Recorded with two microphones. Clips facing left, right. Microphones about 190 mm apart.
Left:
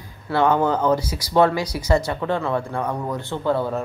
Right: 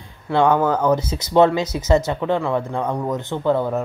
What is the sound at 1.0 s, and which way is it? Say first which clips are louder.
Speech: right 3 dB; 25° right (ahead or behind).